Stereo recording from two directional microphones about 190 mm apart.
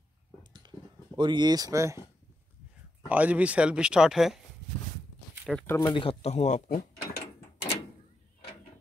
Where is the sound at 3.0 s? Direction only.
10° right (ahead or behind).